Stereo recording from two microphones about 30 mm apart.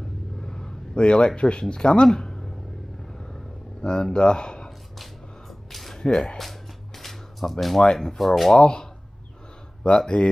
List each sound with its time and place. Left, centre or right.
0.4 s vehicle: left
0.9 s speech: left
2.1 s a sound: left
5.5 s a sound: centre
5.9 s speech: left
7.0 s music: centre
7.8 s speech: left
8.2 s speech: centre
9.8 s speech: left